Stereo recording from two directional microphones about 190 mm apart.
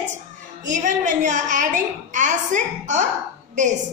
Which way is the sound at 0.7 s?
40° right (ahead or behind).